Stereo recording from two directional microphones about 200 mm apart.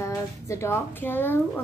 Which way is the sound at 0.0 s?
15° left (ahead or behind).